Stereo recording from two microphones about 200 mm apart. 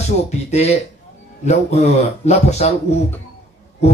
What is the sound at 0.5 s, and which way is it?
Speech, 30° left (ahead or behind).